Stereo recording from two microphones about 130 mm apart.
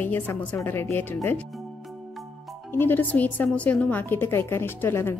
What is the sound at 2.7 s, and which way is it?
A woman's voice, 15° left (ahead or behind).